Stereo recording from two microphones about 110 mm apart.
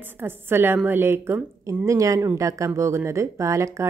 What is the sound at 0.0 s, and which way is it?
Speech, 20° right (ahead or behind).